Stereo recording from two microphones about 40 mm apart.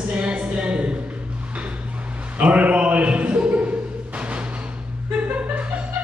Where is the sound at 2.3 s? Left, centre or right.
Right.